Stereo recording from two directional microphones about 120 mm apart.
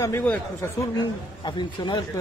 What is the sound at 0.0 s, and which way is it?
Speech, 20° left (ahead or behind).